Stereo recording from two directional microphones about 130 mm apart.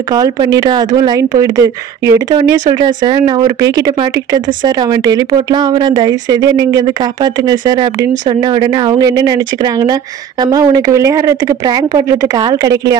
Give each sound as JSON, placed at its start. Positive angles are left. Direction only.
{"t": 0.1, "sound": "speech", "side_deg": -30}